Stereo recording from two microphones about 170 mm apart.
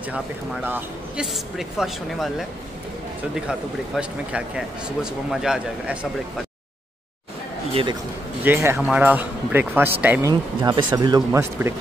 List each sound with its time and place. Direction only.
0.7 s a man's voice: 10° right (ahead or behind)
7.7 s speech: 30° right (ahead or behind)
8.5 s speech: 15° right (ahead or behind)
10.6 s speech: 25° right (ahead or behind)